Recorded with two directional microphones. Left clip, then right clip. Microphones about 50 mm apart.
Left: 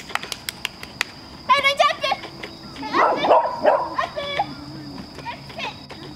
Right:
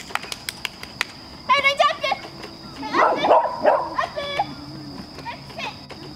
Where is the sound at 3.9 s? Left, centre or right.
Centre.